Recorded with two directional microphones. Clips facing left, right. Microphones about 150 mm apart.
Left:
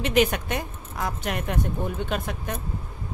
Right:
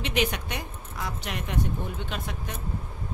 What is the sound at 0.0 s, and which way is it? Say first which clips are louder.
Speech: left 6 dB; 50° left (ahead or behind).